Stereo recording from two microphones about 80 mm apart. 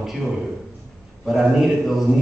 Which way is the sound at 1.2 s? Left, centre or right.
Centre.